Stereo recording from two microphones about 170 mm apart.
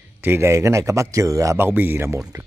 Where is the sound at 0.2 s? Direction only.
15° right (ahead or behind).